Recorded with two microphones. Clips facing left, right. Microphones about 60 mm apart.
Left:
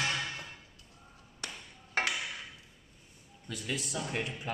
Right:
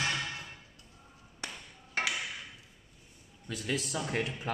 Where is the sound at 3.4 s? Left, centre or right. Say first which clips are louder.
Right 3 dB; right.